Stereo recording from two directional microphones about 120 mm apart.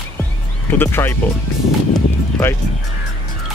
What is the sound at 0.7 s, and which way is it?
Speech, 20° left (ahead or behind).